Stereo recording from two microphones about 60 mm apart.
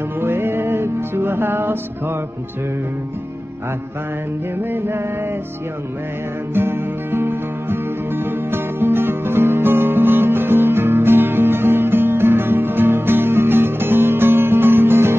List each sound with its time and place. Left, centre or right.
0.2 s music: right
4.6 s music: right
6.5 s music: right